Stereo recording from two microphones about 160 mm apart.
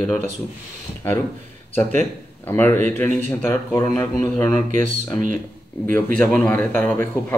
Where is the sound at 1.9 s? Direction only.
10° left (ahead or behind).